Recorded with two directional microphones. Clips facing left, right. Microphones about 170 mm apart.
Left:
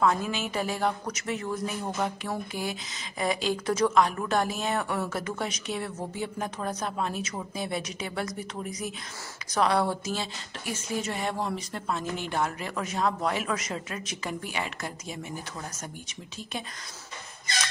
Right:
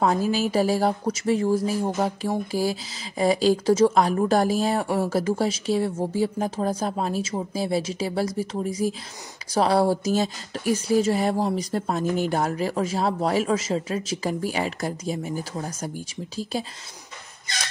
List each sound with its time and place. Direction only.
0.0 s speech: 35° right (ahead or behind)